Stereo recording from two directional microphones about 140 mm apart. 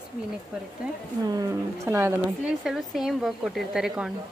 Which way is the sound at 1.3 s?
20° right (ahead or behind).